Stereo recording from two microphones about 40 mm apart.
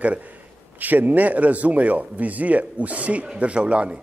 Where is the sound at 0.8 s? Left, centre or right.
Right.